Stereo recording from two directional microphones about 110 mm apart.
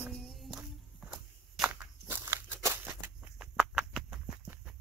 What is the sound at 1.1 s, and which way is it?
Walk, 5° right (ahead or behind).